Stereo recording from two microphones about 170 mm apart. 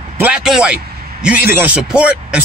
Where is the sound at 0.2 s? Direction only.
5° right (ahead or behind).